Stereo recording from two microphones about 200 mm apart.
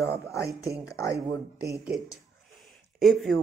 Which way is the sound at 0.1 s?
15° left (ahead or behind).